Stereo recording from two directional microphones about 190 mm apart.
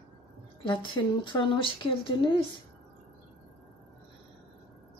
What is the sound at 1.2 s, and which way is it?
Speech, 25° left (ahead or behind).